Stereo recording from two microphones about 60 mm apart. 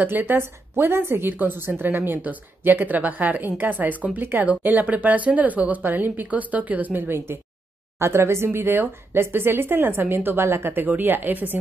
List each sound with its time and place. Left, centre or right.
0.0 s a woman's voice: right